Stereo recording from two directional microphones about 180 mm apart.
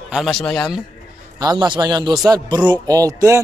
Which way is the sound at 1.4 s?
20° right (ahead or behind).